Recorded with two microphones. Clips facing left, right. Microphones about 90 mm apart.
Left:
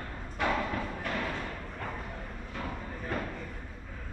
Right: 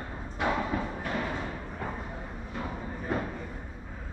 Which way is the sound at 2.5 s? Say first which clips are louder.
Right 2 dB; 15° right (ahead or behind).